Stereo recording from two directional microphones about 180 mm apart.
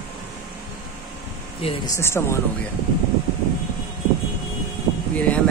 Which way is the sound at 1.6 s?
30° left (ahead or behind).